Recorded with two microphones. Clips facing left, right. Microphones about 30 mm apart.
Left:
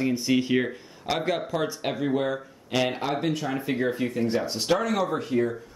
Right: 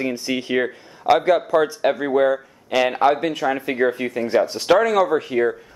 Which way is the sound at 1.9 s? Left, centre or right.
Centre.